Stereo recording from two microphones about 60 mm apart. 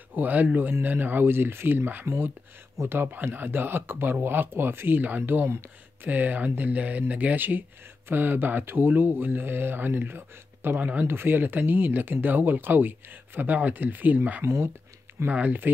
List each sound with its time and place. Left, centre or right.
0.1 s speech: right
10.8 s speech: right
11.1 s speech: right
14.4 s speech: right
15.2 s speech: right